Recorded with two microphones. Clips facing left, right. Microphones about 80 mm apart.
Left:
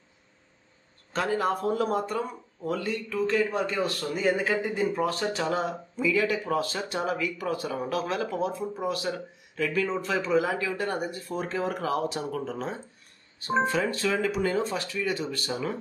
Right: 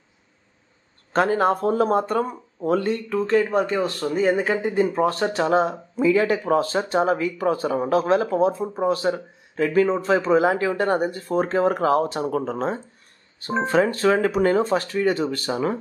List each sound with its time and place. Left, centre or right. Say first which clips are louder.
1.1 s speech: right 7 dB; right